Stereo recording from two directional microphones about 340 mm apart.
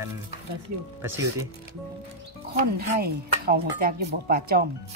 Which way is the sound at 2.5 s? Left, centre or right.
Right.